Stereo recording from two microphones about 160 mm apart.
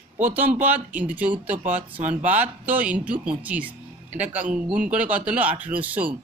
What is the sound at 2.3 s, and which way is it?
Speech, 10° right (ahead or behind).